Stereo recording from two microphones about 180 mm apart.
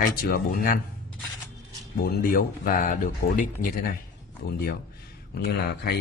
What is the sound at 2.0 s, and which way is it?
Speech, 55° left (ahead or behind).